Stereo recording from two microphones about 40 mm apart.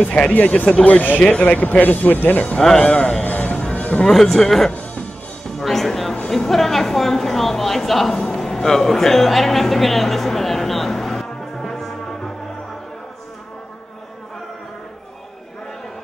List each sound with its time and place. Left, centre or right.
0.3 s speech: left
2.8 s a man's voice: left
3.3 s music: left
4.1 s a man's voice: centre
5.6 s music: centre
6.2 s a woman's voice: centre
11.7 s music: centre